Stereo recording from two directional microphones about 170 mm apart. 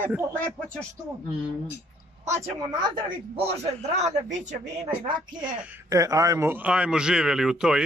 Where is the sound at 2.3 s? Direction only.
25° right (ahead or behind).